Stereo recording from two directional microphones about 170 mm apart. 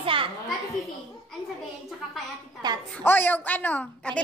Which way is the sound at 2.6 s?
25° right (ahead or behind).